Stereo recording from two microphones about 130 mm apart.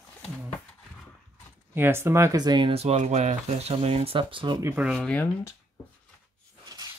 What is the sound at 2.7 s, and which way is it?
Speech, 55° right (ahead or behind).